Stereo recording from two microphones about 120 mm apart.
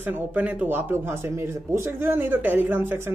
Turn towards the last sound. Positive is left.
turn(degrees=-20)  # may be behind; listen again after turning